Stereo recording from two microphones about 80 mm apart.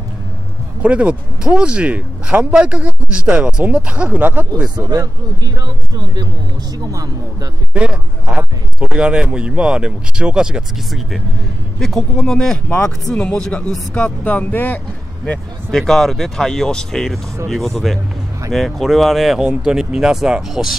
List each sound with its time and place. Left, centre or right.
0.8 s speech: centre
4.6 s speech: right
7.7 s speech: centre; by 14.8 s left
15.7 s speech: centre